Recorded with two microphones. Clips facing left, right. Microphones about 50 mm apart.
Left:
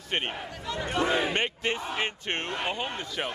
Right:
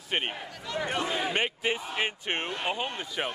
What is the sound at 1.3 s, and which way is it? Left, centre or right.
Speech, centre.